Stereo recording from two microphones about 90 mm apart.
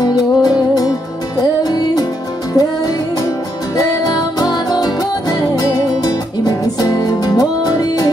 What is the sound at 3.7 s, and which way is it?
Music, 40° left (ahead or behind).